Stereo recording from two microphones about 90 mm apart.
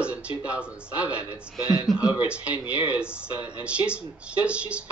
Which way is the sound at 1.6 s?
45° left (ahead or behind).